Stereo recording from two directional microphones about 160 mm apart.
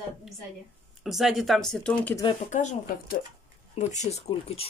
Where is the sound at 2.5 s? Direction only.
50° left (ahead or behind).